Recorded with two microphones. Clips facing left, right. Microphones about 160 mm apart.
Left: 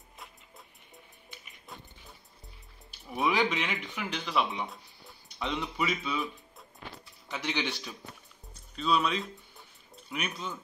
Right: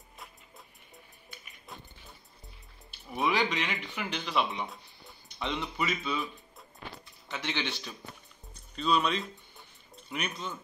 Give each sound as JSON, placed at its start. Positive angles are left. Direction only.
{"t": 3.1, "sound": "a man's voice", "side_deg": 5}
{"t": 8.7, "sound": "music", "side_deg": 5}